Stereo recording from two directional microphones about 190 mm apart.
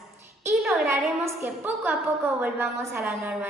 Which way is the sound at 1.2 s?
10° right (ahead or behind).